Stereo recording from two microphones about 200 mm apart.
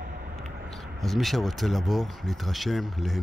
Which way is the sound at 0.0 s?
45° right (ahead or behind).